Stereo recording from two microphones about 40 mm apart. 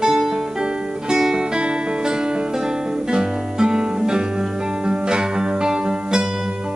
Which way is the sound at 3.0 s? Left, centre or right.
Right.